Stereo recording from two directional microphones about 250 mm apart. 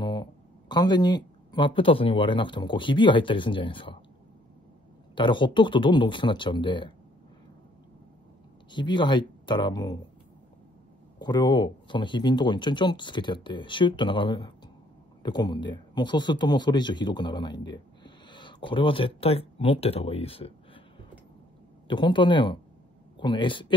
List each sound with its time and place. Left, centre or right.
0.0 s speech: centre
5.1 s speech: centre
8.7 s speech: centre
11.1 s speech: centre
21.8 s speech: centre